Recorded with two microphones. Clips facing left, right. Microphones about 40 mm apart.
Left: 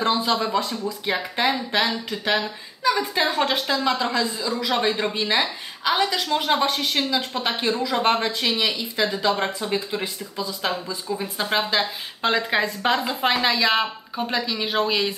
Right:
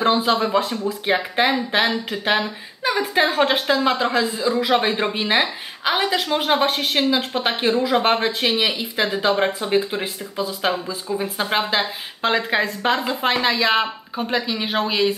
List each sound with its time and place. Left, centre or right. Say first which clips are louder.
0.0 s a woman's voice: right 4 dB; right; by 15.1 s centre